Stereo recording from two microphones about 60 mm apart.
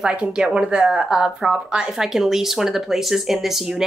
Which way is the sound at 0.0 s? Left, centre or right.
Centre.